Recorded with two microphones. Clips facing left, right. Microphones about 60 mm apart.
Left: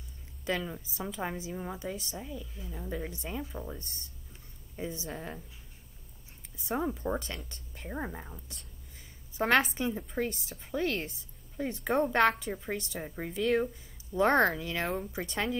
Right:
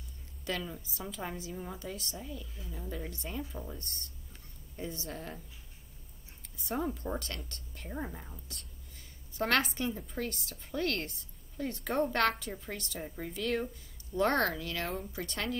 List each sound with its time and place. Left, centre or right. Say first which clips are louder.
0.5 s a woman's voice: left 4 dB; centre
6.7 s a woman's voice: left 3 dB; centre